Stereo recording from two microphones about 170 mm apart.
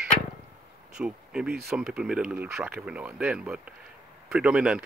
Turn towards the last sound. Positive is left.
turn(degrees=-5)  # may be behind; listen again after turning